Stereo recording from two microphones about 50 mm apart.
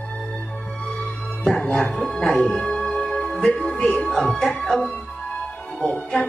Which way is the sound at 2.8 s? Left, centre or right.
Centre.